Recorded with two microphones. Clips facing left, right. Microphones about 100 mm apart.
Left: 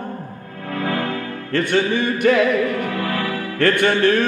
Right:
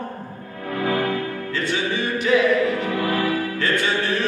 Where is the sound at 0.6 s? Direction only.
20° right (ahead or behind).